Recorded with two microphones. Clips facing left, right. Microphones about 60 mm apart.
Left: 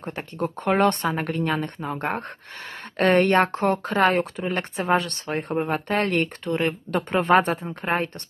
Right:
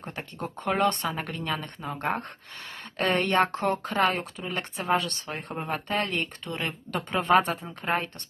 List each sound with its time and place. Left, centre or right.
0.0 s a woman's voice: left
5.7 s a woman's voice: left